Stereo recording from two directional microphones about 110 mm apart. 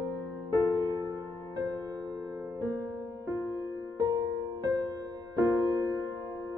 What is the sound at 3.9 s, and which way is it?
Music, 35° right (ahead or behind).